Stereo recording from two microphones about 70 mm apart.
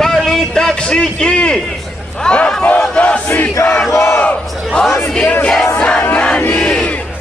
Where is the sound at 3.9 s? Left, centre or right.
Left.